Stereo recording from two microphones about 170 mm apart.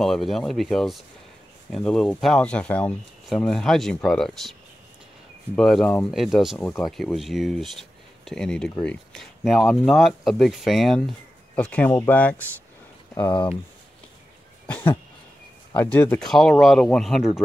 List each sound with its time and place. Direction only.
0.0 s speech: centre (ahead or behind)
5.6 s speech: centre (ahead or behind)
13.3 s speech: 30° left (ahead or behind)
14.7 s a sound: 10° left (ahead or behind)
15.7 s speech: 10° left (ahead or behind)